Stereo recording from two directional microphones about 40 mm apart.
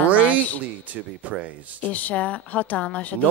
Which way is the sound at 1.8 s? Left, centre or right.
Left.